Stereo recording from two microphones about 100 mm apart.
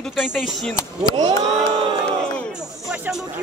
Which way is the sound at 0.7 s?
40° left (ahead or behind).